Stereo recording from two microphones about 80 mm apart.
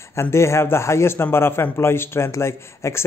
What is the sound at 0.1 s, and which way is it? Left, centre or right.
A man's voice, left.